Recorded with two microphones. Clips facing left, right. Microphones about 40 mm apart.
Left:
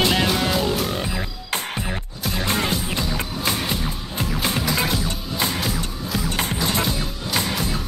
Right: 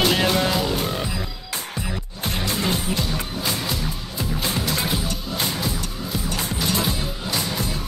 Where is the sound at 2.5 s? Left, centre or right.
Left.